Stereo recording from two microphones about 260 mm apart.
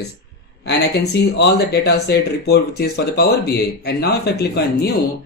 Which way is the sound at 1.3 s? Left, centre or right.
Left.